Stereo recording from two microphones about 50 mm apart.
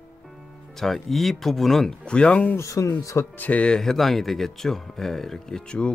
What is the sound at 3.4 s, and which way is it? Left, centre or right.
Speech, left.